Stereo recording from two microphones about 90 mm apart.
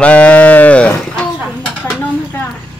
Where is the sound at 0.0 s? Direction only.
15° left (ahead or behind).